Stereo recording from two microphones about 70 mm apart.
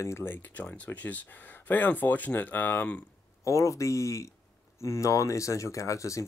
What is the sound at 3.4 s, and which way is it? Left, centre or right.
Speech, left.